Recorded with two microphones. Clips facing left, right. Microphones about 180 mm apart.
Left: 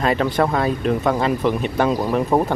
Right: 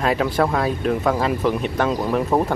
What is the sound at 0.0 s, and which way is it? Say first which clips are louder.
Speech: left 1 dB; centre (ahead or behind).